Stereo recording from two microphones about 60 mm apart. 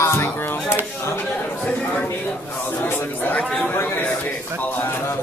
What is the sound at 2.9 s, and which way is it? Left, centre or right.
Speech, left.